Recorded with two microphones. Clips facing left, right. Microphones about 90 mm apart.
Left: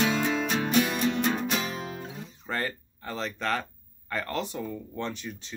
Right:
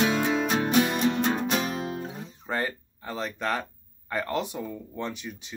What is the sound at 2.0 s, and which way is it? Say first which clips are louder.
Guitar: right 3 dB; 15° right (ahead or behind).